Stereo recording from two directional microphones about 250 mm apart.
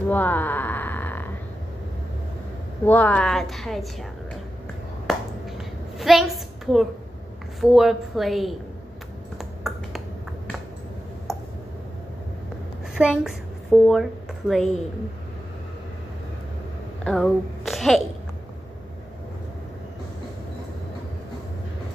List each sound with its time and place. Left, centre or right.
0.1 s a sound: centre
2.8 s a woman's voice: centre
5.9 s a woman's voice: centre
9.4 s finger snapping: centre
12.9 s a woman's voice: centre
17.0 s speech: centre